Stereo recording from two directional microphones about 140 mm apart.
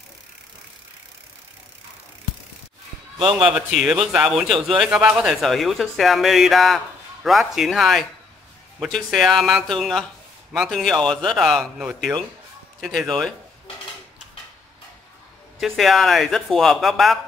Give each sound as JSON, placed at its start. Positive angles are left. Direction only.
{"t": 3.2, "sound": "a man's voice", "side_deg": -40}
{"t": 3.5, "sound": "speech", "side_deg": -5}
{"t": 15.6, "sound": "speech", "side_deg": 0}